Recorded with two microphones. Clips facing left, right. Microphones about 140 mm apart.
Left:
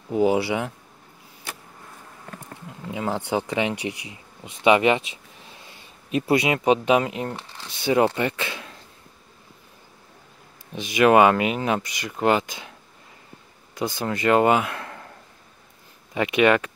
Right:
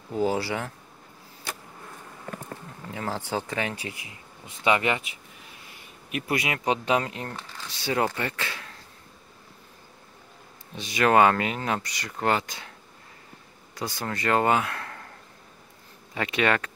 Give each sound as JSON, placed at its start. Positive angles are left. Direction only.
{"t": 0.1, "sound": "speech", "side_deg": 20}
{"t": 2.9, "sound": "speech", "side_deg": 15}
{"t": 10.7, "sound": "speech", "side_deg": 20}
{"t": 13.7, "sound": "speech", "side_deg": 20}
{"t": 16.2, "sound": "speech", "side_deg": 15}